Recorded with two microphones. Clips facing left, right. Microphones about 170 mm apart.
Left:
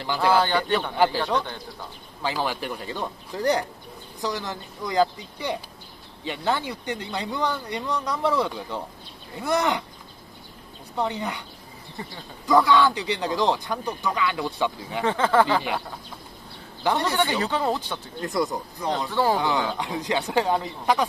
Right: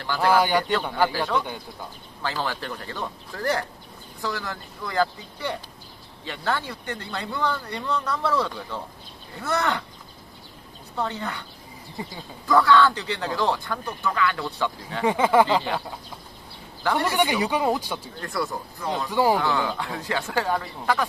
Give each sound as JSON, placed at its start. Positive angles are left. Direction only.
{"t": 0.0, "sound": "speech", "side_deg": 15}
{"t": 0.3, "sound": "speech", "side_deg": -10}
{"t": 0.9, "sound": "speech", "side_deg": 15}
{"t": 11.0, "sound": "speech", "side_deg": 15}
{"t": 12.0, "sound": "speech", "side_deg": -10}
{"t": 12.4, "sound": "speech", "side_deg": 15}
{"t": 15.0, "sound": "speech", "side_deg": -10}
{"t": 16.8, "sound": "speech", "side_deg": 20}
{"t": 17.1, "sound": "speech", "side_deg": -15}
{"t": 18.2, "sound": "speech", "side_deg": 20}
{"t": 19.0, "sound": "speech", "side_deg": -10}
{"t": 19.3, "sound": "speech", "side_deg": 20}